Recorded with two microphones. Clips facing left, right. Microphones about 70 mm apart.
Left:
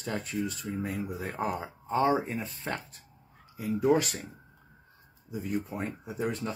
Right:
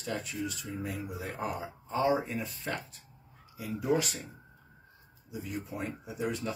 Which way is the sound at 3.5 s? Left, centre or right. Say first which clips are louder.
Left 5 dB; left.